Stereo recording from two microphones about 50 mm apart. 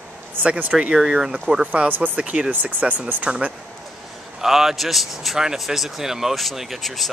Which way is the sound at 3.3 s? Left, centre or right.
Centre.